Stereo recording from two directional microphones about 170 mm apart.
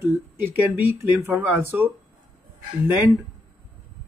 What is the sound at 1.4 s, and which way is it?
Speech, 10° right (ahead or behind).